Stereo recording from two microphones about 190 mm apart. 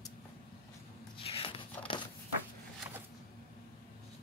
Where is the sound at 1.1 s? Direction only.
30° left (ahead or behind).